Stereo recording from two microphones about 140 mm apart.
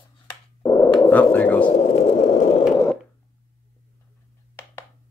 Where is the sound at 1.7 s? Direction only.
60° left (ahead or behind).